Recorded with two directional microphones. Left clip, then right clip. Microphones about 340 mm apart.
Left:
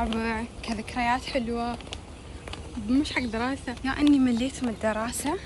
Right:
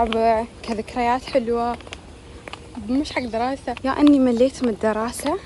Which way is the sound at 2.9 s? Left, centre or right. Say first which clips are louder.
Right 3 dB; centre.